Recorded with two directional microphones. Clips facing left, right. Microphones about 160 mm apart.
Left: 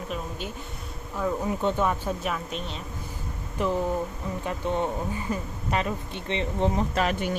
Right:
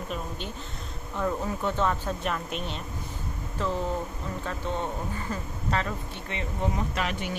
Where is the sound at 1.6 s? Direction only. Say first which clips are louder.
Left 1 dB; 15° left (ahead or behind).